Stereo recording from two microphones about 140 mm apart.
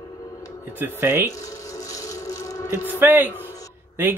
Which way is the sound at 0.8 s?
15° right (ahead or behind).